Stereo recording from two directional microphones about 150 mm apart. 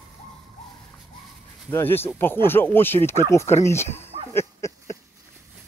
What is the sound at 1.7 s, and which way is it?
Speech, 15° left (ahead or behind).